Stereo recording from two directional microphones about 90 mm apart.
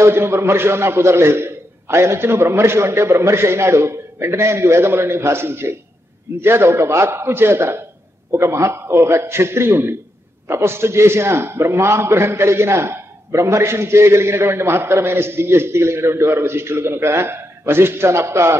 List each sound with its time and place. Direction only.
0.0 s a man's voice: 25° right (ahead or behind)